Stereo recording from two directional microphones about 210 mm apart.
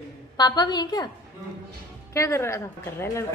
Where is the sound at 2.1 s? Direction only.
15° left (ahead or behind).